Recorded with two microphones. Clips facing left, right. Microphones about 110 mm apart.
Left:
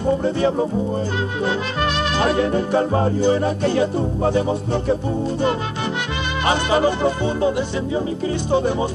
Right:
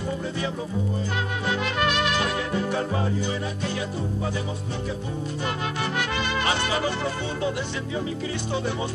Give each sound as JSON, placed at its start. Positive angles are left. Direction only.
{"t": 0.2, "sound": "music", "side_deg": 50}
{"t": 1.4, "sound": "speech", "side_deg": 30}
{"t": 3.3, "sound": "music", "side_deg": 55}
{"t": 6.7, "sound": "speech", "side_deg": 25}
{"t": 8.5, "sound": "speech", "side_deg": 40}